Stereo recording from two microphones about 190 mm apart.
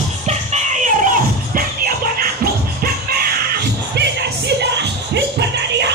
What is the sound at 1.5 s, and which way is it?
Music, 50° right (ahead or behind).